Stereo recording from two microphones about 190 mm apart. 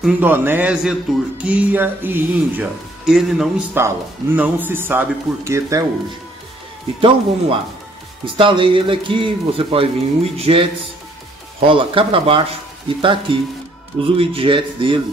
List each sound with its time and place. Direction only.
0.0 s speech: 10° right (ahead or behind)
7.0 s speech: 30° right (ahead or behind)